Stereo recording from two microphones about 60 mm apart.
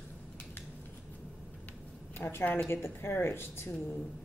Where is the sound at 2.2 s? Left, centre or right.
Left.